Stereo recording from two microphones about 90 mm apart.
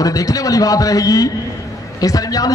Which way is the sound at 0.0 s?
40° left (ahead or behind).